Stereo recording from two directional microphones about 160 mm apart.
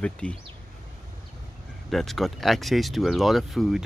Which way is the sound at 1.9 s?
Centre (ahead or behind).